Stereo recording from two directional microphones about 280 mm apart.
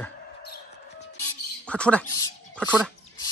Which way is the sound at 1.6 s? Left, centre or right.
Centre.